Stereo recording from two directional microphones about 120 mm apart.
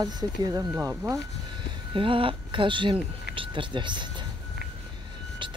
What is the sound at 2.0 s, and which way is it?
Speech, 45° right (ahead or behind).